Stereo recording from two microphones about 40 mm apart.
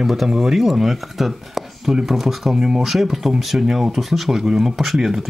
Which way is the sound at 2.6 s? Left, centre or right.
Centre.